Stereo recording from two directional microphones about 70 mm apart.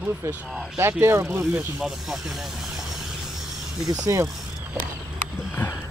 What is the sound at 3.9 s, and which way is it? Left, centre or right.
Speech, right.